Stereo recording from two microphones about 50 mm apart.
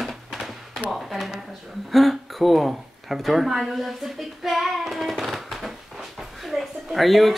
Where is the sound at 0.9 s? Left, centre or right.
Centre.